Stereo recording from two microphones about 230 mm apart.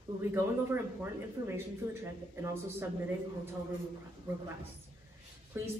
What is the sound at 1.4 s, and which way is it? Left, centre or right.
Speech, centre.